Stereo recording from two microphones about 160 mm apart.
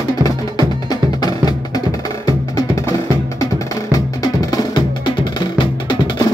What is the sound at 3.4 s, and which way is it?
Music, 20° left (ahead or behind).